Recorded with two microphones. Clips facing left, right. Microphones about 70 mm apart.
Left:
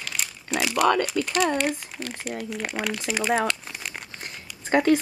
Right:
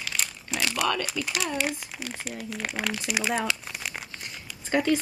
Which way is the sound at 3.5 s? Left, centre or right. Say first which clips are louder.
Left 1 dB; centre.